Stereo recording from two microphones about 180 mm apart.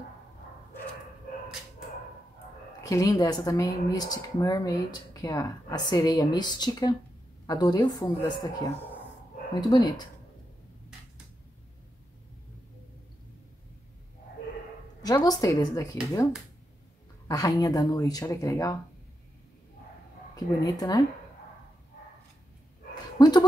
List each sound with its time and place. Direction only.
2.8 s speech: 20° left (ahead or behind)
9.5 s speech: 20° left (ahead or behind)
15.0 s speech: 20° left (ahead or behind)
17.3 s speech: 20° left (ahead or behind)
20.3 s speech: 20° left (ahead or behind)
23.1 s speech: 20° left (ahead or behind)